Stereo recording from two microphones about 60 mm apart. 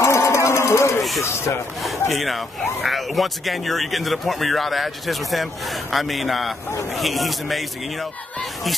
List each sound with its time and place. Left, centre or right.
0.0 s a sound: left
1.2 s speech: left
1.8 s speech: centre